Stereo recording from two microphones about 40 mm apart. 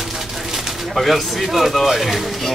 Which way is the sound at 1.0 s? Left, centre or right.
Centre.